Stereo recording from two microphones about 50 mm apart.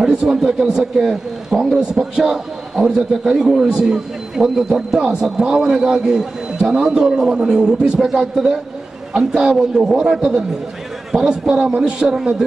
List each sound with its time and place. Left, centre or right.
0.0 s a man's voice: centre
1.8 s a man's voice: centre